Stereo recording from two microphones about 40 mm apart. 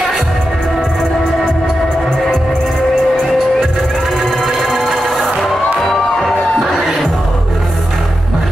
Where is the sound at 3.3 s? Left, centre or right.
Centre.